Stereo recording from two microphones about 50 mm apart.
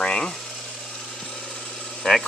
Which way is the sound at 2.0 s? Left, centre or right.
Centre.